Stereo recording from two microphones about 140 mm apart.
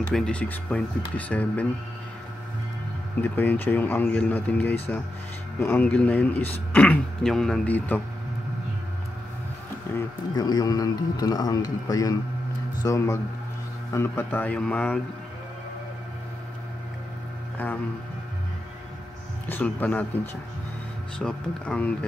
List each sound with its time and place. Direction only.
0.1 s speech: 5° left (ahead or behind)
3.2 s speech: 15° left (ahead or behind)
9.9 s a sound: 20° left (ahead or behind)
10.3 s a man's voice: 30° left (ahead or behind); by 15.0 s 10° left (ahead or behind)
19.4 s speech: 15° left (ahead or behind)
21.2 s speech: 5° left (ahead or behind)